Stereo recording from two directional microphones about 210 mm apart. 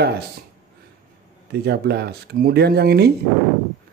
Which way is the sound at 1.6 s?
50° right (ahead or behind).